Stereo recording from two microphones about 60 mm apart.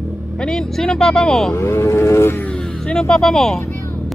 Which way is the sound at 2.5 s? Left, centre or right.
Centre.